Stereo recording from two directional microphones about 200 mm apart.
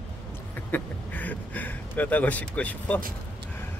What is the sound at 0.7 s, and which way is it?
Speech, 10° left (ahead or behind).